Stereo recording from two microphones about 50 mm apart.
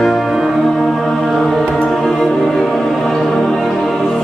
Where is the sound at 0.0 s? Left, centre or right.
Centre.